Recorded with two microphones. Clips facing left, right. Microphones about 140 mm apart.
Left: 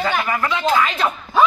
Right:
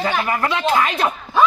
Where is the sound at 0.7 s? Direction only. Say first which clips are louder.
Even; 15° right (ahead or behind).